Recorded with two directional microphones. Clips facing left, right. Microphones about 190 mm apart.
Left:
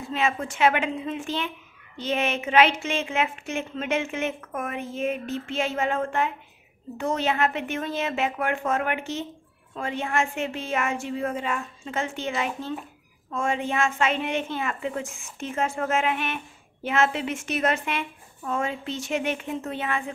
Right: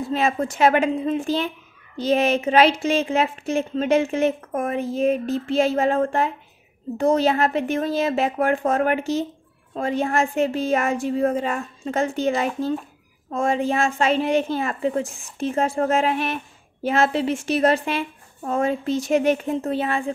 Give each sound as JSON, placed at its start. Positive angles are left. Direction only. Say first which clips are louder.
{"t": 0.0, "sound": "a woman's voice", "louder": "right 5 dB", "side_deg": -35}